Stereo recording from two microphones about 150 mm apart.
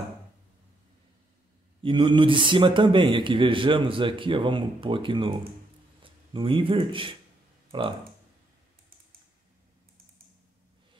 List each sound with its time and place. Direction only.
1.8 s a man's voice: 35° right (ahead or behind)
6.3 s a man's voice: 35° right (ahead or behind)